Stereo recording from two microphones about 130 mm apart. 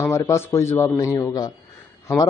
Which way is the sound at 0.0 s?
20° left (ahead or behind).